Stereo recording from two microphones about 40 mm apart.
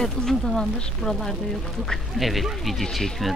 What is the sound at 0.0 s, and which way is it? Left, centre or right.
A man's voice, centre.